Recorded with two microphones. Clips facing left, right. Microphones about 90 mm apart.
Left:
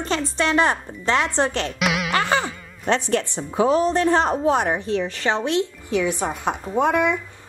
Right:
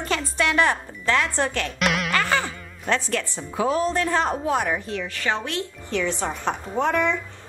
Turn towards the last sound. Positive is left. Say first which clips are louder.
# left 3 dB
turn(degrees=15)  # may be behind; listen again after turning